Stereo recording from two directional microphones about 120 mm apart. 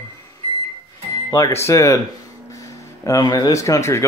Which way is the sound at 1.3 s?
25° left (ahead or behind).